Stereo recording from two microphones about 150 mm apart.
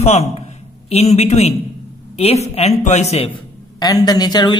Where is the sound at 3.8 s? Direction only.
25° left (ahead or behind).